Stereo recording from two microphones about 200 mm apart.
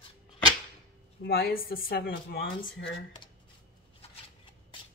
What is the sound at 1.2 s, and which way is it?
Speech, 50° left (ahead or behind).